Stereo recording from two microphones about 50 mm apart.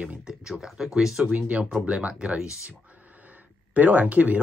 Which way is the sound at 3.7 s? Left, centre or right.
Right.